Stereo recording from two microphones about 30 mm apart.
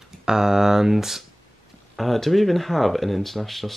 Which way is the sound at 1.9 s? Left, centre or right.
Centre.